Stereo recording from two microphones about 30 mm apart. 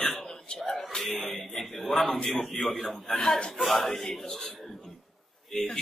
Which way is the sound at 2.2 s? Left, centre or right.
Left.